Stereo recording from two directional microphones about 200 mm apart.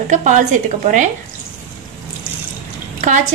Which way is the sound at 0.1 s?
40° right (ahead or behind).